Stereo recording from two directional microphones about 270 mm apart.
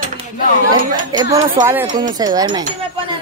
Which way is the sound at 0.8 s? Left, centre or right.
Right.